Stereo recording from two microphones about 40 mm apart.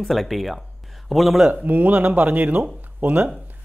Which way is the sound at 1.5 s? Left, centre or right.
Right.